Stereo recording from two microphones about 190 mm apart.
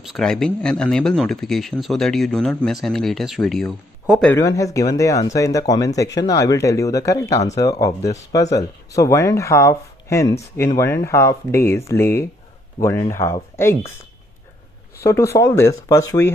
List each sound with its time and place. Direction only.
0.0 s speech: centre (ahead or behind)
4.3 s speech: 15° left (ahead or behind)
15.0 s speech: 15° left (ahead or behind)